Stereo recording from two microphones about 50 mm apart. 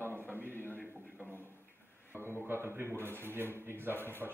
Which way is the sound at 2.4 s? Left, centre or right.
Right.